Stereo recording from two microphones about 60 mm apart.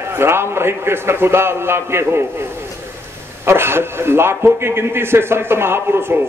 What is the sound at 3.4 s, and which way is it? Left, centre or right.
Speech, right.